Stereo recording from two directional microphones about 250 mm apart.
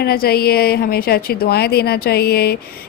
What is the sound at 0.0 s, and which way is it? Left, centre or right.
A woman's voice, left.